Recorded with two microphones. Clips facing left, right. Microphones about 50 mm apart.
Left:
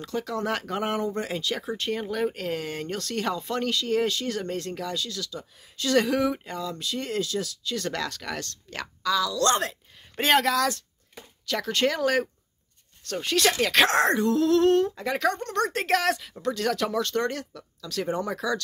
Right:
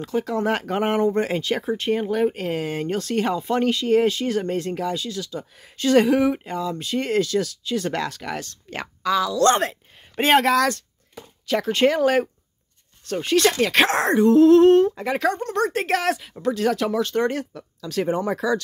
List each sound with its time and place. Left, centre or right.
0.0 s speech: right
1.7 s speech: centre
6.8 s speech: right
7.6 s speech: centre
10.4 s speech: right
11.4 s speech: right
13.1 s speech: centre
14.1 s speech: centre